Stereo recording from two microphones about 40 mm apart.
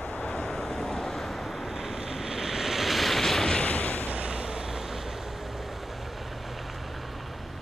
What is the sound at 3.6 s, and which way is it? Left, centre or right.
Artillery fire, left.